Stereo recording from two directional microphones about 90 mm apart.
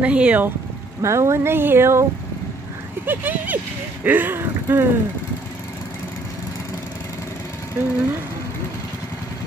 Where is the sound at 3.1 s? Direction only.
20° right (ahead or behind).